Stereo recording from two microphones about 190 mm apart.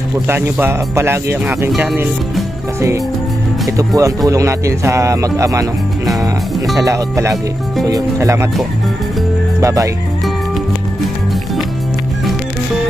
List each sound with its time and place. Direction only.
0.3 s speech: 15° right (ahead or behind)
1.7 s speech: centre (ahead or behind)
3.7 s speech: 15° right (ahead or behind)
6.8 s speech: 15° right (ahead or behind)
9.6 s speech: 15° right (ahead or behind)